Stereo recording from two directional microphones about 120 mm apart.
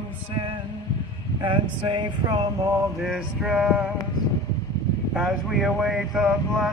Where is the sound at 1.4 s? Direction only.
40° right (ahead or behind).